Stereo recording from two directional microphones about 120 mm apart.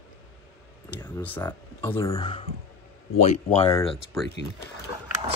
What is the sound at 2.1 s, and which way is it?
Speech, 40° left (ahead or behind).